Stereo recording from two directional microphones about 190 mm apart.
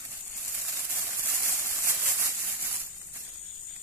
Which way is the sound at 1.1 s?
15° right (ahead or behind).